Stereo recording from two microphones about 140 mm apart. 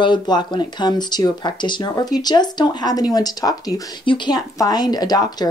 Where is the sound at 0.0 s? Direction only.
35° left (ahead or behind).